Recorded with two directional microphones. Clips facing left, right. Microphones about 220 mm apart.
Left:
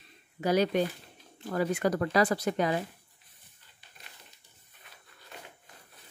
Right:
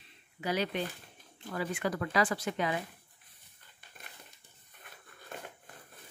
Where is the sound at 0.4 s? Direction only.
40° left (ahead or behind).